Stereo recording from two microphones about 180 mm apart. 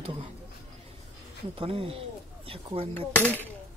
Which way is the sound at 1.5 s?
30° right (ahead or behind).